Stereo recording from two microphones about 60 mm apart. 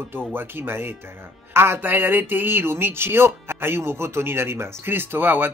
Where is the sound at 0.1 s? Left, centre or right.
Right.